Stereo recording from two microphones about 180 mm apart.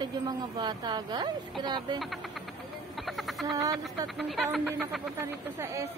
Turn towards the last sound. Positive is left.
turn(degrees=-15)  # may be behind; listen again after turning